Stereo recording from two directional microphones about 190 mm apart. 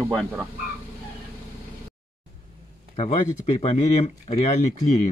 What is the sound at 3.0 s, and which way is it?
Speech, 35° left (ahead or behind).